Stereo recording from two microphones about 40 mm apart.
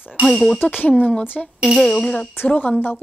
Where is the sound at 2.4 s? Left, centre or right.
Left.